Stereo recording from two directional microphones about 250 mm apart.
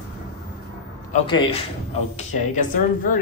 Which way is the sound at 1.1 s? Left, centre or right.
Left.